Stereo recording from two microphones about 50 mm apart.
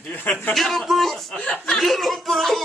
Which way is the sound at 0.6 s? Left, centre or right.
Centre.